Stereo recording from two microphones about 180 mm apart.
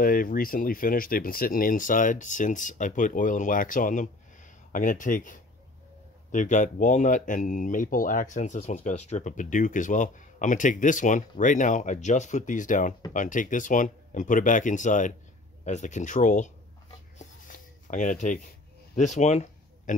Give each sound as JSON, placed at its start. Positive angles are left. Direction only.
{"t": 0.0, "sound": "speech", "side_deg": 50}
{"t": 17.8, "sound": "speech", "side_deg": 45}